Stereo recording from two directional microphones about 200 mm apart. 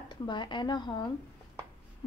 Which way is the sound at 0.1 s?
25° left (ahead or behind).